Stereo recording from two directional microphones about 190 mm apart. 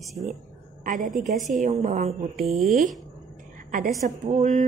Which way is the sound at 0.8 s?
45° right (ahead or behind).